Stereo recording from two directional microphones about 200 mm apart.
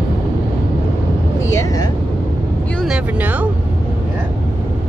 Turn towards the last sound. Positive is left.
turn(degrees=-5)  # may be behind; listen again after turning